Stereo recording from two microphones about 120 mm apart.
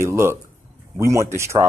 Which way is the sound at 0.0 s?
20° right (ahead or behind).